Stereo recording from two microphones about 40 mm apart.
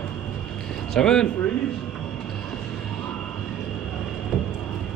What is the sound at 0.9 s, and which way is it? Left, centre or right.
Speech, centre.